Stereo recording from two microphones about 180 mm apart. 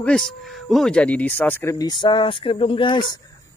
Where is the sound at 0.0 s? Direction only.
5° left (ahead or behind).